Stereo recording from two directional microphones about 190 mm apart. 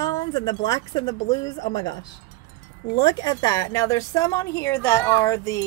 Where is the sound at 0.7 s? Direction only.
20° left (ahead or behind).